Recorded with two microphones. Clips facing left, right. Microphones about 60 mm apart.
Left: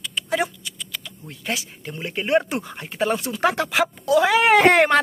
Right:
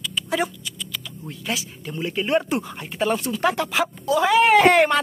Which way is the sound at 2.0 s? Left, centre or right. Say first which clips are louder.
Left 1 dB; left.